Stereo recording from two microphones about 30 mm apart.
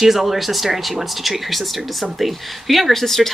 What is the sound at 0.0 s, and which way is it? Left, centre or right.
Speech, centre.